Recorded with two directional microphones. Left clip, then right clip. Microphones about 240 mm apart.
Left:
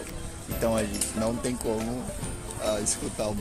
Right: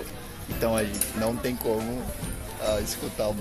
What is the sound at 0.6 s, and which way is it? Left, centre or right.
Speech, centre.